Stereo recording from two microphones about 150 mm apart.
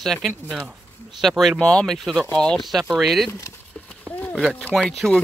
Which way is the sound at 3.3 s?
20° left (ahead or behind).